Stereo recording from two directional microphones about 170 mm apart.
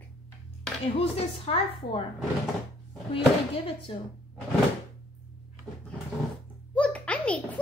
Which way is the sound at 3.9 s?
30° left (ahead or behind).